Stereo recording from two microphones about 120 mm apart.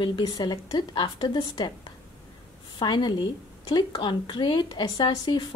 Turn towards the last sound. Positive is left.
turn(degrees=40)  # may be behind; listen again after turning